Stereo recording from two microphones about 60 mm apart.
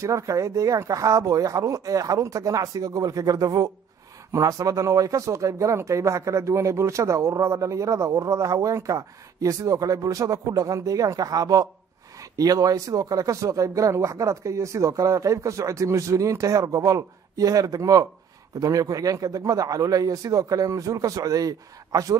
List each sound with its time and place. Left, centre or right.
0.0 s speech: right
4.3 s speech: right
12.2 s speech: right
18.6 s speech: right